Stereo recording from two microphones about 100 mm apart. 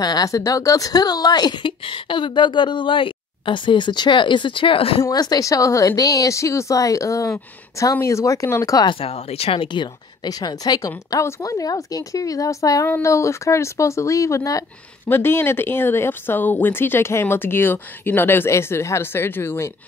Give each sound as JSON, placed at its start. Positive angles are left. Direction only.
{"t": 0.0, "sound": "a woman's voice", "side_deg": 40}
{"t": 1.9, "sound": "a woman's voice", "side_deg": 55}
{"t": 5.1, "sound": "a woman's voice", "side_deg": 40}
{"t": 8.8, "sound": "speech", "side_deg": 80}
{"t": 10.2, "sound": "a woman's voice", "side_deg": 40}
{"t": 15.0, "sound": "speech", "side_deg": 25}